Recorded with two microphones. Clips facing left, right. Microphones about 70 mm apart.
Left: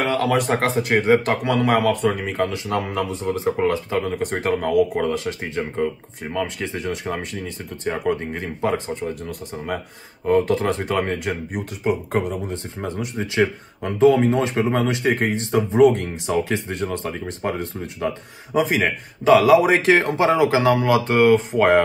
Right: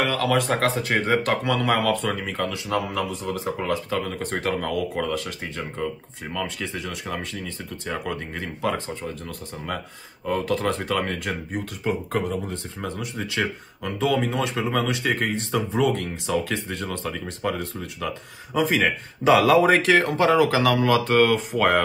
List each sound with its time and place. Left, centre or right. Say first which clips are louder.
0.0 s speech: left 2 dB; left
4.0 s speech: left 4 dB; centre
10.3 s speech: left 5 dB; left
19.2 s speech: left 3 dB; centre
19.8 s speech: left 2 dB; left